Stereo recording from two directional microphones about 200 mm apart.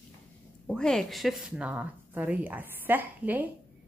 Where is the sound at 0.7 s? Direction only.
Centre (ahead or behind).